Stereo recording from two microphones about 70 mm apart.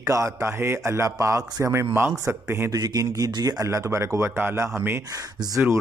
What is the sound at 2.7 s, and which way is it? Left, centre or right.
Speech, right.